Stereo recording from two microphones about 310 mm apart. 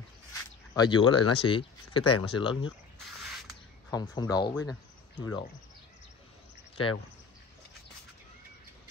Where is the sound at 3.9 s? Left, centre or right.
Centre.